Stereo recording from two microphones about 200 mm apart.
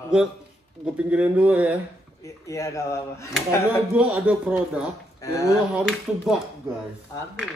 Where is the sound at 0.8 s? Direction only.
5° right (ahead or behind).